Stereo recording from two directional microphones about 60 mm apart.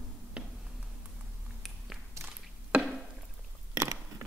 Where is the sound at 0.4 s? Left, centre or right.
Centre.